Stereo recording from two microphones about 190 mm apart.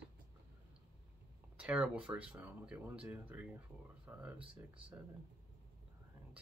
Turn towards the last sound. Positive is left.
turn(degrees=-30)  # may be behind; listen again after turning